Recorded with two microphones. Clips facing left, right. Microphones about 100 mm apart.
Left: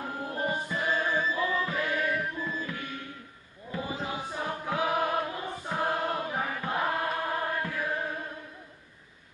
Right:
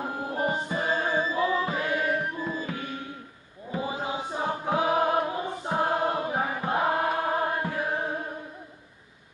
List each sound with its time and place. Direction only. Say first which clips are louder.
0.0 s music: right 4 dB; 20° right (ahead or behind)
3.7 s chant: right 3 dB; 25° right (ahead or behind)